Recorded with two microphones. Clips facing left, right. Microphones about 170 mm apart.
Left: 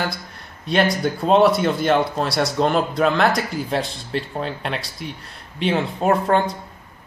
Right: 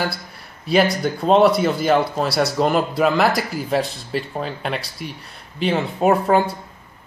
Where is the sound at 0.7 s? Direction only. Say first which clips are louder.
Right 2 dB; centre (ahead or behind).